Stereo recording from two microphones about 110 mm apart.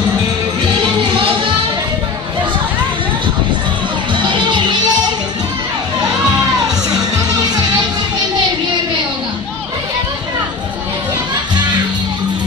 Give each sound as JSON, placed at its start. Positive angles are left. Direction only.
{"t": 4.1, "sound": "music", "side_deg": -45}